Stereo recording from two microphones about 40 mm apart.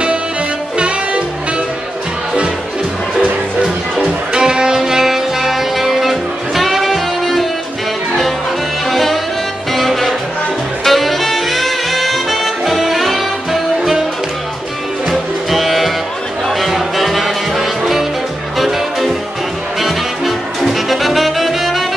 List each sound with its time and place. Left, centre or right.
0.7 s music: right
4.3 s music: centre
8.8 s music: centre
15.0 s music: centre